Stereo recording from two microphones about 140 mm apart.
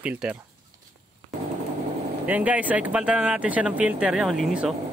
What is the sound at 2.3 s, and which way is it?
Speech, 10° right (ahead or behind).